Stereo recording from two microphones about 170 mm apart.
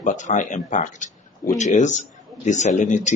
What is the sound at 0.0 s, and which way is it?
Speech, 45° left (ahead or behind).